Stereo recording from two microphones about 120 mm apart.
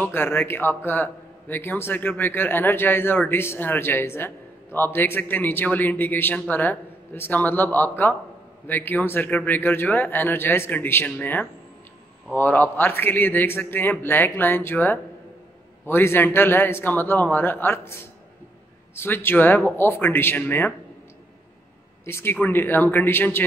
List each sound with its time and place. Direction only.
0.0 s a man's voice: 15° left (ahead or behind)
18.9 s a man's voice: 20° left (ahead or behind)
22.0 s a man's voice: 20° left (ahead or behind)